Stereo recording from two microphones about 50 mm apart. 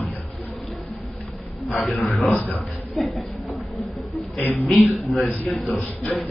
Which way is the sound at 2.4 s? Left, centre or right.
Left.